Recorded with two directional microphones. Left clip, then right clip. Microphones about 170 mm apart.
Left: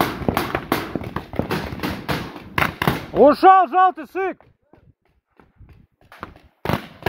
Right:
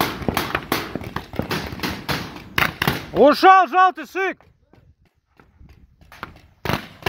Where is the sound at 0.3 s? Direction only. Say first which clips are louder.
Left 1 dB; 50° right (ahead or behind).